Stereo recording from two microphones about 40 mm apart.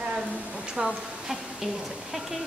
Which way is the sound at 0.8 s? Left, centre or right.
Centre.